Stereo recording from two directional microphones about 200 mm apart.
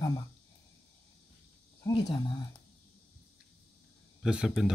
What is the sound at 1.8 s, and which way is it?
Speech, 20° left (ahead or behind).